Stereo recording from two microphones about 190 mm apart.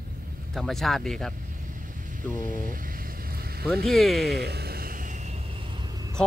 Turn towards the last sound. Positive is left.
turn(degrees=-20)  # may be behind; listen again after turning